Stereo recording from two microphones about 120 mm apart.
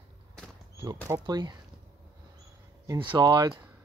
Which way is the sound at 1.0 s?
35° right (ahead or behind).